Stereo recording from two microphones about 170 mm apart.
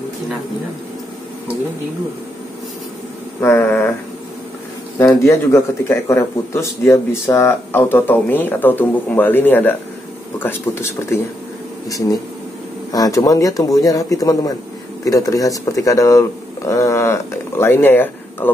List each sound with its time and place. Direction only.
3.3 s speech: 15° left (ahead or behind)
4.9 s speech: 15° left (ahead or behind)
12.9 s a man's voice: 20° left (ahead or behind)